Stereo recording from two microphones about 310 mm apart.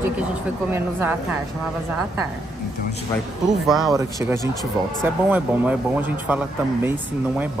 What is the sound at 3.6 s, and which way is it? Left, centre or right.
Speech, centre.